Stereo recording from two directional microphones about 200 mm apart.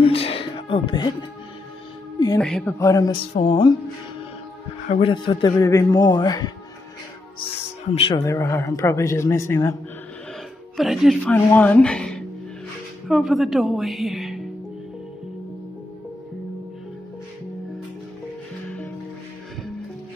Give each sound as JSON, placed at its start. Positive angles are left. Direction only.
{"t": 0.0, "sound": "music", "side_deg": 30}
{"t": 2.1, "sound": "music", "side_deg": 20}
{"t": 2.4, "sound": "a woman's voice", "side_deg": 5}
{"t": 2.8, "sound": "a man's voice", "side_deg": 15}
{"t": 3.3, "sound": "speech", "side_deg": 30}
{"t": 4.8, "sound": "speech", "side_deg": 30}
{"t": 7.9, "sound": "speech", "side_deg": 25}
{"t": 8.2, "sound": "a man's voice", "side_deg": 15}
{"t": 10.8, "sound": "a woman's voice", "side_deg": 0}
{"t": 11.3, "sound": "a woman's voice", "side_deg": 10}